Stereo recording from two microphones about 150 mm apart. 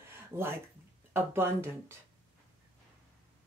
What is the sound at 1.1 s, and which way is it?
Speech, 15° right (ahead or behind).